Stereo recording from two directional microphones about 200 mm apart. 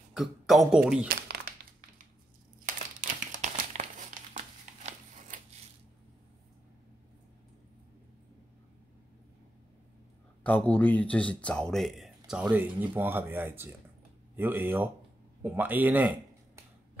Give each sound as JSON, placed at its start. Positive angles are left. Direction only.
{"t": 0.1, "sound": "speech", "side_deg": 0}
{"t": 1.0, "sound": "a sound", "side_deg": -50}
{"t": 2.6, "sound": "crumpling", "side_deg": -40}
{"t": 4.8, "sound": "scissors", "side_deg": -35}
{"t": 10.4, "sound": "speech", "side_deg": 10}